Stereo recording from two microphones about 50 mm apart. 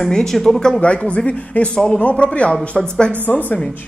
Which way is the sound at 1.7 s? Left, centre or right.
Centre.